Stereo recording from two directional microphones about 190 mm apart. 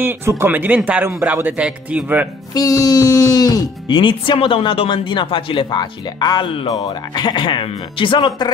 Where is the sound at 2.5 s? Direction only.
20° left (ahead or behind).